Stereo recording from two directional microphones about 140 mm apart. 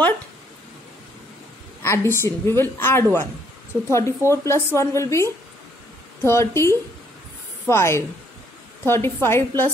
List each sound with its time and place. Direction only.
1.8 s a woman's voice: 20° left (ahead or behind)